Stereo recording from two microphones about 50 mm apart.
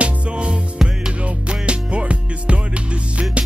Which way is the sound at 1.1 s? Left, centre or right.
Right.